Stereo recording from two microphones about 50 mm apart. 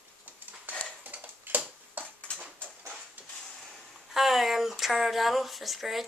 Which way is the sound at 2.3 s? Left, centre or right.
Left.